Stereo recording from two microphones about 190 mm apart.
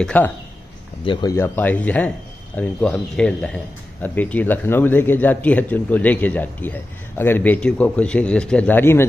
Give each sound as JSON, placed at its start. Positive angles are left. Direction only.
{"t": 0.0, "sound": "a man's voice", "side_deg": 5}
{"t": 1.0, "sound": "speech", "side_deg": 25}
{"t": 1.3, "sound": "a man's voice", "side_deg": 10}